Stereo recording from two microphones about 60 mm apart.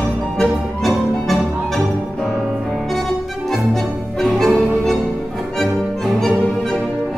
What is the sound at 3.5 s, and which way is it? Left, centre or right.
Music, centre.